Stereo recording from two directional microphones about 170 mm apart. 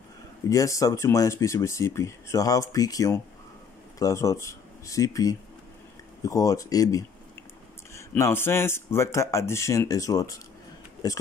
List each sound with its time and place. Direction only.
0.5 s speech: 20° left (ahead or behind)